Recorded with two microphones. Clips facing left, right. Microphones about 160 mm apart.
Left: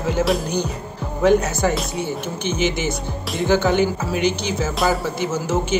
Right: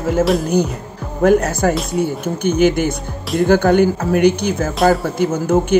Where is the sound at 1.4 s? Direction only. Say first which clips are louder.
Right 4 dB; 55° right (ahead or behind).